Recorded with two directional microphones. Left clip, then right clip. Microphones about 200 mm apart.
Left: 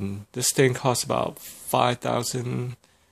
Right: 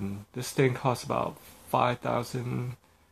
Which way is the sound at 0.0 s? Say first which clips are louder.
Left 9 dB; 50° left (ahead or behind).